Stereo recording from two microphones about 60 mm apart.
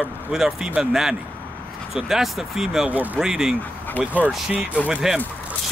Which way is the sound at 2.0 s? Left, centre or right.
Centre.